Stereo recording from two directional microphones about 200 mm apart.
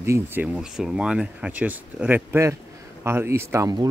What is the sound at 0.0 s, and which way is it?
Speech, 10° right (ahead or behind).